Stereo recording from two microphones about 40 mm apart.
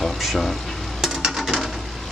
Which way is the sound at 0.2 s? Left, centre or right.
Centre.